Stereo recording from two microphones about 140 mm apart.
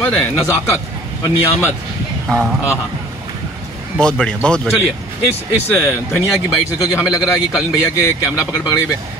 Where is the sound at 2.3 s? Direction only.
5° left (ahead or behind).